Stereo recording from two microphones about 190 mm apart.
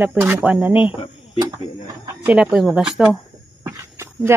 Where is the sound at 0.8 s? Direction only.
30° left (ahead or behind).